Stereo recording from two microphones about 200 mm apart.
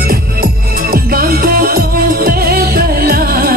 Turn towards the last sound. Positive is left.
turn(degrees=-50)  # may be behind; listen again after turning